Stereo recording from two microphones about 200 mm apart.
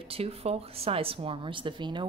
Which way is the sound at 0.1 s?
30° right (ahead or behind).